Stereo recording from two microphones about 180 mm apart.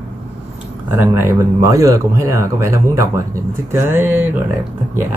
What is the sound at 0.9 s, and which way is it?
Speech, 10° right (ahead or behind).